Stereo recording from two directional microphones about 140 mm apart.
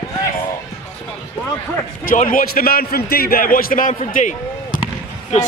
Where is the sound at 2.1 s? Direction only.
80° left.